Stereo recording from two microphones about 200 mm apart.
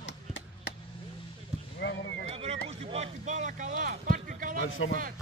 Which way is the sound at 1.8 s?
60° left (ahead or behind).